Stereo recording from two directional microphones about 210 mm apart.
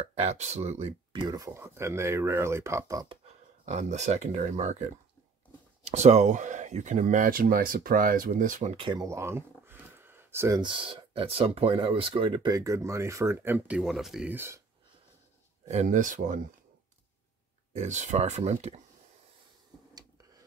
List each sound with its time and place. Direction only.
0.0 s speech: 30° right (ahead or behind)
3.6 s speech: 35° right (ahead or behind)
5.9 s speech: 30° right (ahead or behind); by 14.6 s 10° right (ahead or behind)
15.7 s speech: 35° right (ahead or behind)
17.7 s speech: 35° right (ahead or behind)